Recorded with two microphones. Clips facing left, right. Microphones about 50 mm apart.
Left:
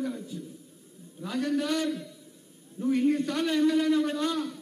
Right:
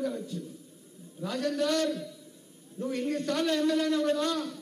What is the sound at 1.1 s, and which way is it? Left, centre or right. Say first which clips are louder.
A man's voice: left 1 dB; centre.